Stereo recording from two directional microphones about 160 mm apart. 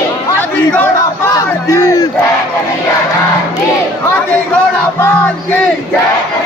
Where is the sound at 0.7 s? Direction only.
10° left (ahead or behind).